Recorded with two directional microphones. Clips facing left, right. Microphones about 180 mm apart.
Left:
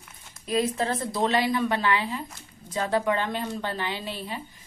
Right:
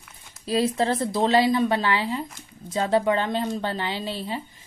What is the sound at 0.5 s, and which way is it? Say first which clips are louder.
A woman's voice: right 3 dB; 30° right (ahead or behind).